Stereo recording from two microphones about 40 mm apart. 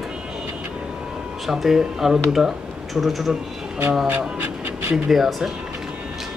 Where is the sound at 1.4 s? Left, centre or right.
Centre.